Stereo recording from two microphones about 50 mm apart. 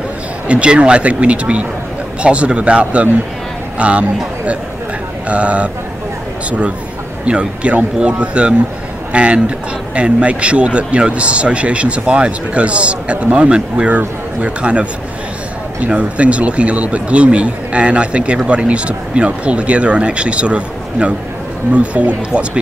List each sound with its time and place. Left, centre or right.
0.5 s speech: right
5.3 s speech: right
7.2 s speech: right